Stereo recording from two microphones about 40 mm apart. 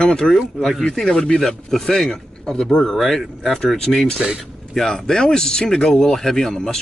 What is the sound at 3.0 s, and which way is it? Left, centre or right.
Speech, centre.